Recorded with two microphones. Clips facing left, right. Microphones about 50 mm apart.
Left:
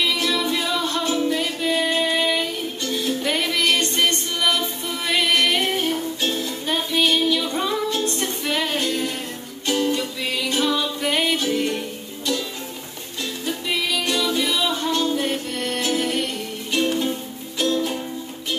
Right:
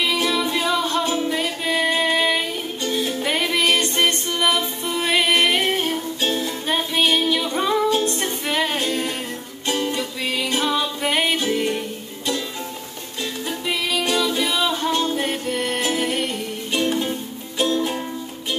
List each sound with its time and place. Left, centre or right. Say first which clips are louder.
0.0 s music: right 1 dB; right
11.5 s music: right 1 dB; centre
13.5 s music: even; centre
14.9 s music: even; right
17.6 s music: right 1 dB; centre